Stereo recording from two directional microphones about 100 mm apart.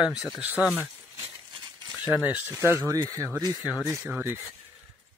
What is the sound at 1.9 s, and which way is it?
Speech, 15° right (ahead or behind).